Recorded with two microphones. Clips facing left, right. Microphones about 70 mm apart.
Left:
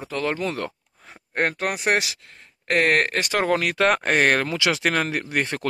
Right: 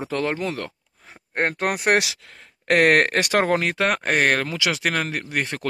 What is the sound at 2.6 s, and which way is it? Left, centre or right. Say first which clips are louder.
Speech: right 3 dB; right.